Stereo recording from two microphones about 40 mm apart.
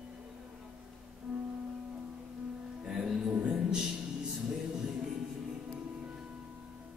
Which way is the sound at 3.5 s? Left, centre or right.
Centre.